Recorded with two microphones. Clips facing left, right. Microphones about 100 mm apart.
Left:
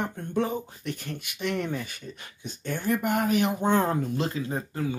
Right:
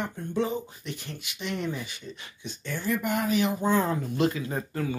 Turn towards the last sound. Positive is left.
turn(degrees=20)  # may be behind; listen again after turning